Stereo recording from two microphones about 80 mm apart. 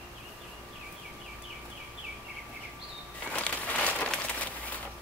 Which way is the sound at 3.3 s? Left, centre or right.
Centre.